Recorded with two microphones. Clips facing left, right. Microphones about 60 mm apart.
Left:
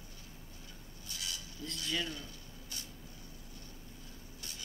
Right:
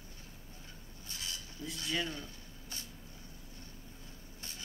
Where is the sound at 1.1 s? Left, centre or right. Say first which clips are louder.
Even; right.